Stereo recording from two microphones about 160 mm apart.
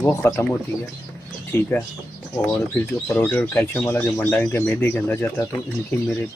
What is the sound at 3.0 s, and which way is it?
Speech, 15° left (ahead or behind).